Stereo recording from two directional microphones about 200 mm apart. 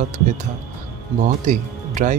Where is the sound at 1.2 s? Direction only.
40° right (ahead or behind).